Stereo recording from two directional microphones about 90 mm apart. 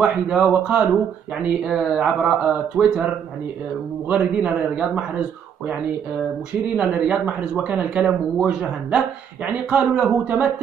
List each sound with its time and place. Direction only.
0.0 s speech: 15° right (ahead or behind)
4.1 s speech: 15° right (ahead or behind)
6.8 s speech: 15° right (ahead or behind)
9.5 s speech: 15° right (ahead or behind)